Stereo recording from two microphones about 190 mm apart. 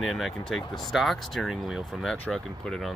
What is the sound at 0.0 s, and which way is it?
Speech, centre (ahead or behind).